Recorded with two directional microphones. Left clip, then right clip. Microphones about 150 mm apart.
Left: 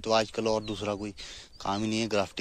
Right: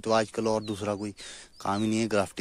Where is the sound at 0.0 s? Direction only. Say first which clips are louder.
Right 1 dB; 55° right (ahead or behind).